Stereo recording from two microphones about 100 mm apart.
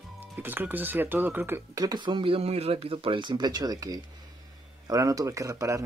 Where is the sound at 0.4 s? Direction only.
20° right (ahead or behind).